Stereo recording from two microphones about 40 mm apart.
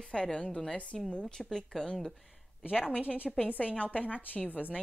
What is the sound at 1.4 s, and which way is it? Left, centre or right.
Speech, centre.